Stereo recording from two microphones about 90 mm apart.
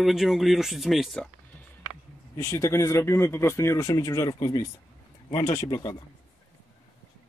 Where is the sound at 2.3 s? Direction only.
30° left (ahead or behind).